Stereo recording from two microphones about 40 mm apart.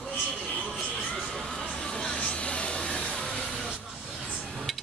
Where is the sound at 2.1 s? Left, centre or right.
Left.